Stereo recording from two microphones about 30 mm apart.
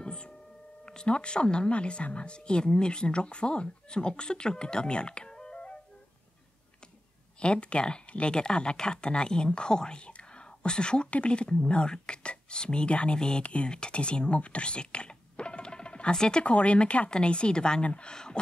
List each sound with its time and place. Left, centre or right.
0.0 s singing bowl: left
0.8 s speech: left
3.6 s speech: left
5.5 s music: left
7.3 s speech: left
11.1 s speech: left
13.4 s speech: left
13.7 s speech: left
14.4 s music: left
16.4 s speech: left
17.8 s speech: left
18.1 s a sound: left